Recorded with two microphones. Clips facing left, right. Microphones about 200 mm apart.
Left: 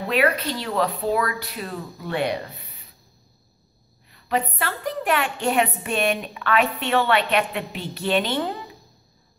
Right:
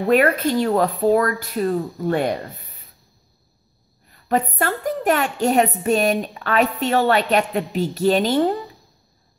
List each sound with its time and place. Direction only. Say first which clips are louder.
0.0 s speech: right 5 dB; 50° right (ahead or behind)
4.1 s a woman's voice: right 4 dB; 45° right (ahead or behind)